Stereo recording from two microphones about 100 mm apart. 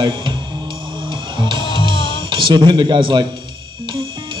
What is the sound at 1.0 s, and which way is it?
Guitar, 50° right (ahead or behind).